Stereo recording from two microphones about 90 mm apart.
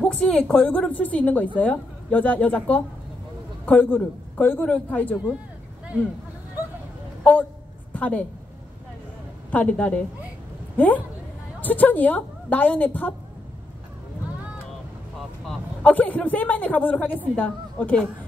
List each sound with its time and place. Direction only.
0.0 s a woman's voice: 10° left (ahead or behind)
7.2 s a woman's voice: 15° left (ahead or behind)
9.5 s a woman's voice: 15° left (ahead or behind)
11.6 s a man's voice: 20° left (ahead or behind)
15.8 s a woman's voice: 20° left (ahead or behind)